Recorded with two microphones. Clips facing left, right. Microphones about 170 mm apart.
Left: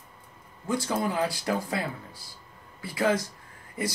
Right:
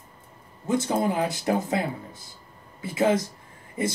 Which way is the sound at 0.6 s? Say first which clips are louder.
Right 4 dB; 25° right (ahead or behind).